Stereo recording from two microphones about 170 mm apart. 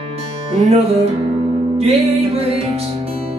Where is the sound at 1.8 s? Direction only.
35° right (ahead or behind).